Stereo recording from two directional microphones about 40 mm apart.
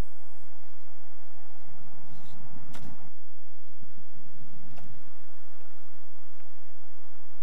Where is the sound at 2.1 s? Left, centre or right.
Centre.